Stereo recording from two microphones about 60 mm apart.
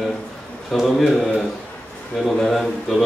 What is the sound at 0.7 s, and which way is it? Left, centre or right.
A man's voice, centre.